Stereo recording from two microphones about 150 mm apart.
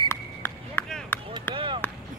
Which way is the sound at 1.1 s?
15° left (ahead or behind).